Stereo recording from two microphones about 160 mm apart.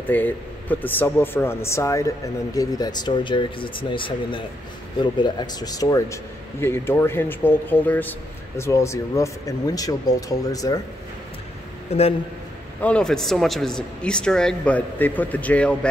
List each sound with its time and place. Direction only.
0.1 s speech: 10° left (ahead or behind)
12.8 s speech: 5° left (ahead or behind)